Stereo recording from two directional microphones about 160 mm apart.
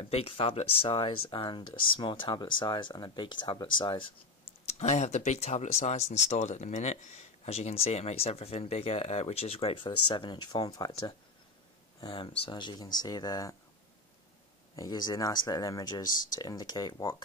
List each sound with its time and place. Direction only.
0.0 s speech: 35° left (ahead or behind)
4.6 s speech: 45° left (ahead or behind); by 13.6 s 25° left (ahead or behind)
14.8 s speech: 25° left (ahead or behind)